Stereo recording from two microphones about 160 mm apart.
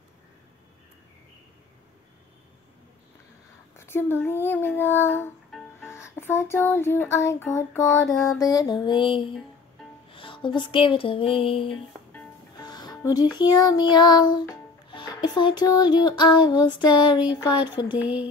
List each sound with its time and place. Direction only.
3.7 s speech: 15° left (ahead or behind)
5.8 s music: 15° left (ahead or behind)
8.4 s mantra: 25° left (ahead or behind)
10.1 s music: 30° left (ahead or behind)
17.3 s mantra: 30° left (ahead or behind)
18.0 s a sound: 10° right (ahead or behind)